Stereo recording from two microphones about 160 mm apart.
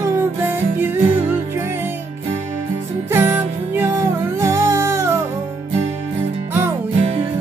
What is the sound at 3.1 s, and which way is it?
Music, 15° right (ahead or behind).